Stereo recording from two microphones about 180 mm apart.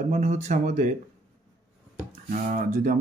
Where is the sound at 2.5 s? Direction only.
45° right (ahead or behind).